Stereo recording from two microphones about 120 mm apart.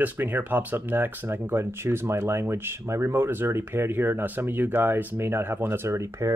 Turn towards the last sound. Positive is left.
turn(degrees=-25)  # may be behind; listen again after turning